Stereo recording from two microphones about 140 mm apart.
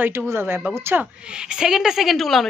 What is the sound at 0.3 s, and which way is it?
Speech, 15° right (ahead or behind).